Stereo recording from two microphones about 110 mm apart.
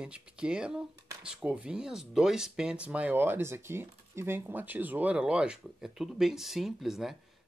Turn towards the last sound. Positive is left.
turn(degrees=-5)  # may be behind; listen again after turning